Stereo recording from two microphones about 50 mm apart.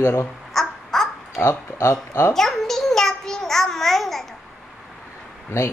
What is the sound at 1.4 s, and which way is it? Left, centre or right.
Speech, left.